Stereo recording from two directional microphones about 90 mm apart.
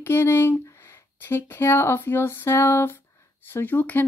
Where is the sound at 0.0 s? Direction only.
25° left (ahead or behind).